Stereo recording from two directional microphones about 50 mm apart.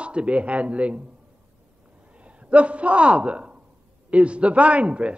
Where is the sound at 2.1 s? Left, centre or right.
Right.